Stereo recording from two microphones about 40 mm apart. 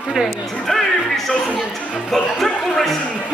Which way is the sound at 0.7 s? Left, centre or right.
Centre.